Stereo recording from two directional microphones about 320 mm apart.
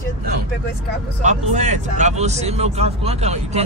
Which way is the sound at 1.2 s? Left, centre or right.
Right.